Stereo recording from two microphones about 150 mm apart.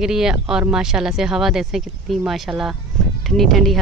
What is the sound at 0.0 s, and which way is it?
Speech, 5° right (ahead or behind).